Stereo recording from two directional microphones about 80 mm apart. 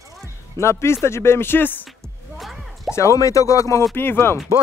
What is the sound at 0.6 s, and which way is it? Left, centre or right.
A man's voice, left.